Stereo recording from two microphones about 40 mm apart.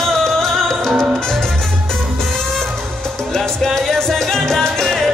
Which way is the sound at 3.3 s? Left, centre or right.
Centre.